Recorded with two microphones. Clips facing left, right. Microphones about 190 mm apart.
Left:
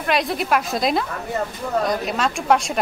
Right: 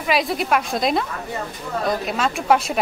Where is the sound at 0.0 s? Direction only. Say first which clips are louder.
Even; centre (ahead or behind).